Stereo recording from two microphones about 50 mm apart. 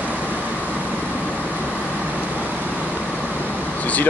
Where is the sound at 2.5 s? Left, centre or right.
Right.